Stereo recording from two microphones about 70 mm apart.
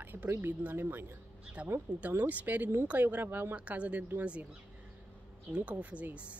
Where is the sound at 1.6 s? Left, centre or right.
Centre.